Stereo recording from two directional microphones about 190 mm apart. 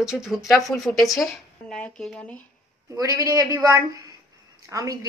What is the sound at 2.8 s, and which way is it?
A woman's voice, 20° right (ahead or behind).